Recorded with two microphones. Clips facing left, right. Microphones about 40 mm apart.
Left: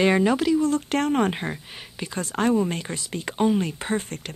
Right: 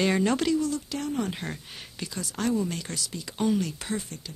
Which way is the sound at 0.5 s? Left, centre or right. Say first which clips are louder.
Left 7 dB; left.